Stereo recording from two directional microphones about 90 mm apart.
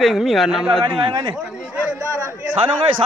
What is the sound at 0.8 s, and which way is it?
Speech, 60° right (ahead or behind).